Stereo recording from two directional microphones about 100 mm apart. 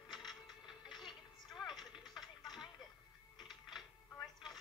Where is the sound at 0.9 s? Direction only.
50° left (ahead or behind).